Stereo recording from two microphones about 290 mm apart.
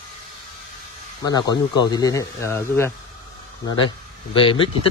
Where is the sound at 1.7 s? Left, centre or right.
Centre.